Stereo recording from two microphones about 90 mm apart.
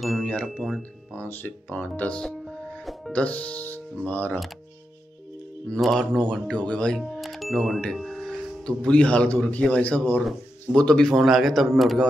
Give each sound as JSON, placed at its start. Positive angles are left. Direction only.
{"t": 0.2, "sound": "a sound", "side_deg": 15}
{"t": 0.6, "sound": "speech", "side_deg": 0}
{"t": 1.1, "sound": "speech", "side_deg": 20}
{"t": 2.2, "sound": "music", "side_deg": 5}
{"t": 3.1, "sound": "speech", "side_deg": 15}
{"t": 5.7, "sound": "speech", "side_deg": 5}
{"t": 11.1, "sound": "speech", "side_deg": 0}